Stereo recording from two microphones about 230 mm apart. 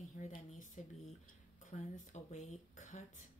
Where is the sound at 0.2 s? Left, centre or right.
Left.